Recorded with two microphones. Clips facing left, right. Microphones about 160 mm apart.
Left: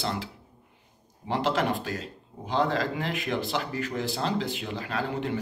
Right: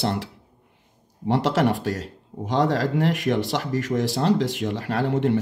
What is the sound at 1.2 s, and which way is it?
Speech, 65° right (ahead or behind).